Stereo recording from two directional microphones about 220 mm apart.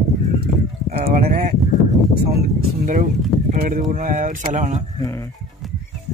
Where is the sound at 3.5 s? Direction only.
40° right (ahead or behind).